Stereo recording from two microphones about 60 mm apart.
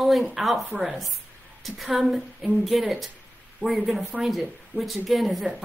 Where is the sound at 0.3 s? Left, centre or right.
Centre.